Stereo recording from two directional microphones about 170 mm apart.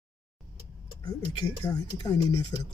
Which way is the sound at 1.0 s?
25° left (ahead or behind).